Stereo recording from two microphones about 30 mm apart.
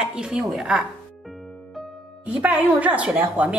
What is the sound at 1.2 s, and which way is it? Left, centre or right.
Music, centre.